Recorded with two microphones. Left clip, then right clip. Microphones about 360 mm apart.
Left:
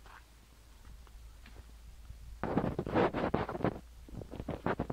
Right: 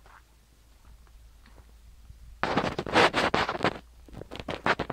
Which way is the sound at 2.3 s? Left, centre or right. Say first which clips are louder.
Right 8 dB; right.